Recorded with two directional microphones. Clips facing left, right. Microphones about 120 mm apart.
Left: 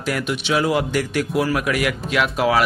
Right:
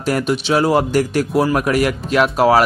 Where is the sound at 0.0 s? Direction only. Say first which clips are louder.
Right 5 dB; 35° right (ahead or behind).